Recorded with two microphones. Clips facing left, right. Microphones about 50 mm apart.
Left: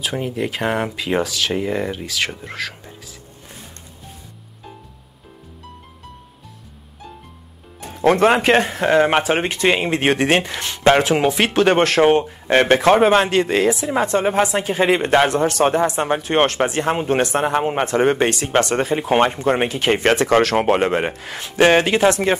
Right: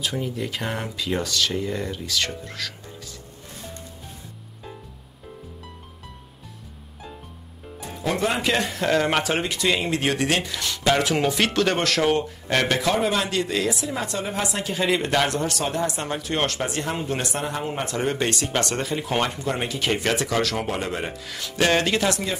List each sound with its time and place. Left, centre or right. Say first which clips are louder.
0.5 s speech: left 8 dB; left
1.2 s speech: left 2 dB; centre
1.5 s speech: left 6 dB; left
2.0 s speech: left 3 dB; centre
7.8 s speech: left 10 dB; left
8.6 s speech: left 6 dB; left
9.4 s speech: left 5 dB; left
11.1 s speech: left 5 dB; left
18.2 s speech: left 7 dB; left